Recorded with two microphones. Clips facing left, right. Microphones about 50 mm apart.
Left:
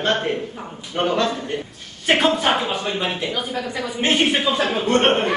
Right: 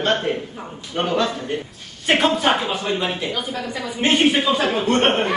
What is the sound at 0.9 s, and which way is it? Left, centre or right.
Speech, centre.